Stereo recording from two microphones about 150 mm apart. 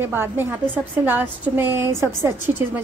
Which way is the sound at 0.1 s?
15° right (ahead or behind).